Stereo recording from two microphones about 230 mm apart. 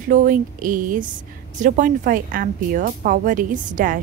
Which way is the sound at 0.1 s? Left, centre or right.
Right.